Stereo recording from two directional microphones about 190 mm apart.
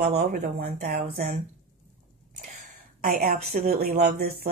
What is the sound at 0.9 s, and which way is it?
Speech, 55° right (ahead or behind).